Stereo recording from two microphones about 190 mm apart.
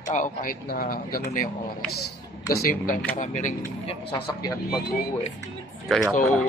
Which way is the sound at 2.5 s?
50° left (ahead or behind).